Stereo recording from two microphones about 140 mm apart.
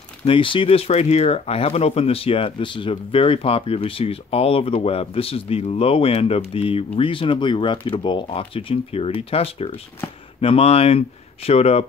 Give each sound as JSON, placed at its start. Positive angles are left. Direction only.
{"t": 0.2, "sound": "speech", "side_deg": 35}